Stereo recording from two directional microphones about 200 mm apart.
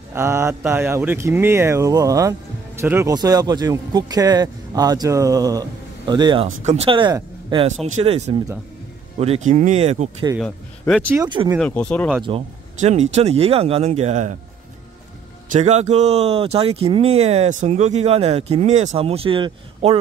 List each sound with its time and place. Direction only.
0.1 s speech: 15° right (ahead or behind)
7.6 s speech: 35° right (ahead or behind)
11.2 s speech: 25° right (ahead or behind)
11.6 s speech: 5° left (ahead or behind)
12.3 s speech: 30° right (ahead or behind)
15.5 s speech: 35° right (ahead or behind)